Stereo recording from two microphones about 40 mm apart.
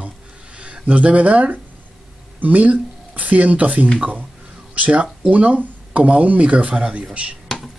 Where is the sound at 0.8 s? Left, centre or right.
Right.